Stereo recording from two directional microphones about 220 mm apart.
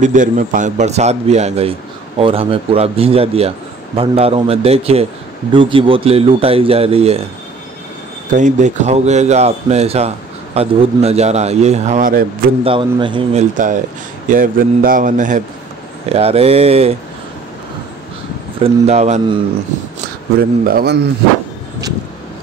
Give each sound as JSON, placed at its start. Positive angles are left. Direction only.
{"t": 0.0, "sound": "a man's voice", "side_deg": -35}
{"t": 8.3, "sound": "a man's voice", "side_deg": -35}
{"t": 12.6, "sound": "a man's voice", "side_deg": -20}
{"t": 18.6, "sound": "a man's voice", "side_deg": -30}
{"t": 20.6, "sound": "a man's voice", "side_deg": -45}